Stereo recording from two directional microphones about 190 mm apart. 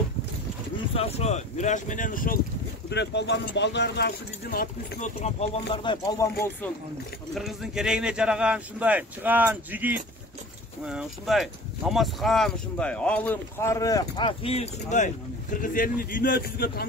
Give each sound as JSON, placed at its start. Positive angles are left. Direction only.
{"t": 0.9, "sound": "speech", "side_deg": 30}
{"t": 2.9, "sound": "speech", "side_deg": 65}
{"t": 5.2, "sound": "speech", "side_deg": 35}
{"t": 7.3, "sound": "a man's voice", "side_deg": 0}